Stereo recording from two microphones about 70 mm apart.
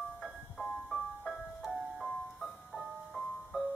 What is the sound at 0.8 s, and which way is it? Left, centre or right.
Music, centre.